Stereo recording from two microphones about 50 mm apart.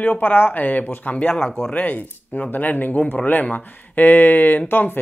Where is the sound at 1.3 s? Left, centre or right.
Centre.